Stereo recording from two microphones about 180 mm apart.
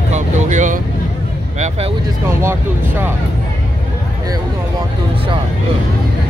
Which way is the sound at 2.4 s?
15° right (ahead or behind).